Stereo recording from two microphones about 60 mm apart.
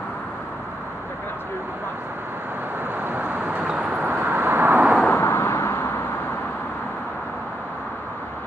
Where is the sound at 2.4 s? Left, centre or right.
Right; by 4.0 s centre.